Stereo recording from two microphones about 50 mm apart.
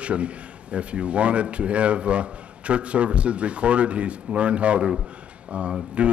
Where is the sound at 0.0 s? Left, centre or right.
Right.